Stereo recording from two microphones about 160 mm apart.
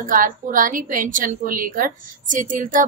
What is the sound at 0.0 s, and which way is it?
A woman's voice, 60° right (ahead or behind).